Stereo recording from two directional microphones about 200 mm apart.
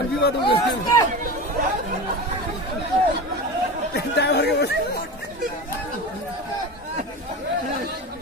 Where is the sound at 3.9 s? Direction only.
55° left (ahead or behind).